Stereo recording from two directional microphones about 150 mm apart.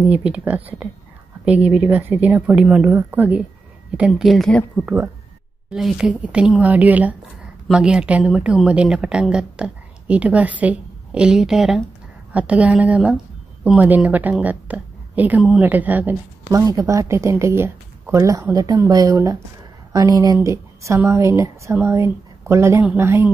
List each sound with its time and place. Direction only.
0.1 s a woman's voice: 10° right (ahead or behind)
4.8 s a woman's voice: 15° right (ahead or behind)
5.7 s a woman's voice: 5° right (ahead or behind)